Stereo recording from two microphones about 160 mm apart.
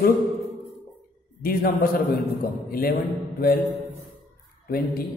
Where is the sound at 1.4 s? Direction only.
60° left (ahead or behind).